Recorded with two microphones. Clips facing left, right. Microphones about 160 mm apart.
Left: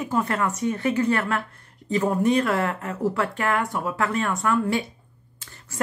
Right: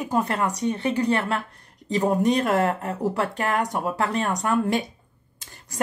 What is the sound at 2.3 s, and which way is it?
Speech, 40° right (ahead or behind).